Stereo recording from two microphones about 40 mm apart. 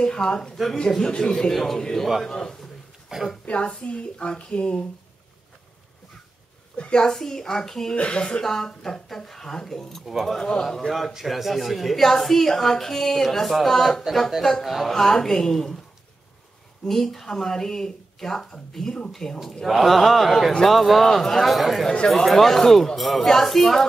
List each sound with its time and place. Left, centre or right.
0.0 s a woman's voice: centre
1.5 s a man's voice: centre
3.1 s a woman's voice: centre
3.4 s a woman's voice: left
6.8 s a woman's voice: left
7.1 s speech: centre
7.9 s a woman's voice: left
8.4 s a woman's voice: centre
10.4 s a woman's voice: centre
16.8 s a woman's voice: centre
19.6 s a woman's voice: centre